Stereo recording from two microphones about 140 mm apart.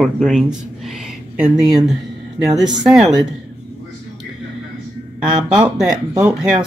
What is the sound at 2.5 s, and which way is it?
Speech, 30° right (ahead or behind).